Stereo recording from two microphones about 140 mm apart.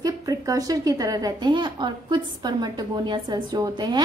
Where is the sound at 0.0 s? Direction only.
25° right (ahead or behind).